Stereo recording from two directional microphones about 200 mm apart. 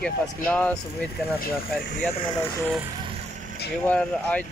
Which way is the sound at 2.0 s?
5° left (ahead or behind).